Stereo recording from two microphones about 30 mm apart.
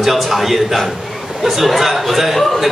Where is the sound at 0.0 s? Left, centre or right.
Centre.